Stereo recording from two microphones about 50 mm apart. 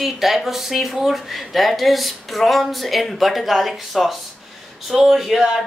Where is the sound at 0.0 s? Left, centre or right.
Centre.